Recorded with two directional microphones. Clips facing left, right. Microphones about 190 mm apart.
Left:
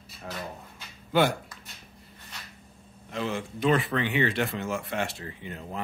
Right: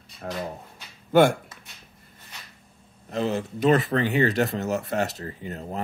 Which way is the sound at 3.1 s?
40° right (ahead or behind).